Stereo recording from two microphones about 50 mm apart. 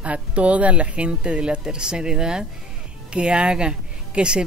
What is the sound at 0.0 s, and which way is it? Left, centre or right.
Speech, right.